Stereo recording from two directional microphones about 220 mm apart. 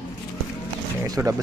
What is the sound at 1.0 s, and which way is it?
Speech, 15° right (ahead or behind).